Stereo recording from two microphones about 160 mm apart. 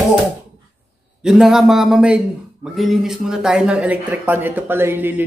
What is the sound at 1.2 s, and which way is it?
Speech, 5° right (ahead or behind).